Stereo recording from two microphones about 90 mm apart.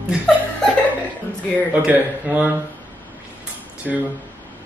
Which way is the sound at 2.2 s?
15° right (ahead or behind).